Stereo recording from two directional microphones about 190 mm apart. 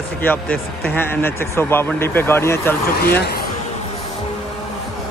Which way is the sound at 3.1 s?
55° left (ahead or behind).